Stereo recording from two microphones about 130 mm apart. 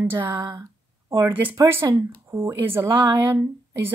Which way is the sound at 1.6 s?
25° right (ahead or behind).